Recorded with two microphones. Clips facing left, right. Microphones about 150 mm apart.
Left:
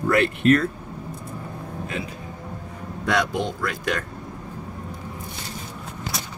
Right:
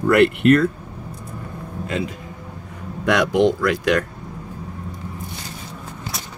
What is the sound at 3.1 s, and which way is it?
Speech, 85° right.